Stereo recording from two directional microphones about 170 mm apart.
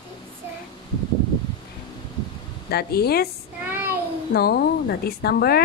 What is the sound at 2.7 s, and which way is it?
Speech, 70° left (ahead or behind).